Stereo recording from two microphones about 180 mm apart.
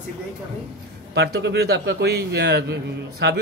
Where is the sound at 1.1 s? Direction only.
60° right (ahead or behind).